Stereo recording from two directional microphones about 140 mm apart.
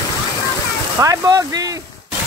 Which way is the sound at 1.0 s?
25° right (ahead or behind).